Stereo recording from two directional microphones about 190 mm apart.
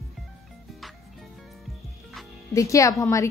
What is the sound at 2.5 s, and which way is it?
Speech, 15° left (ahead or behind).